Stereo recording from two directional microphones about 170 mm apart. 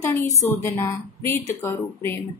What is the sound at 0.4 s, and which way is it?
A woman's voice, 20° left (ahead or behind).